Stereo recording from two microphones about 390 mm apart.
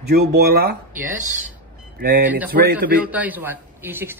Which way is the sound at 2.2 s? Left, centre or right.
Centre.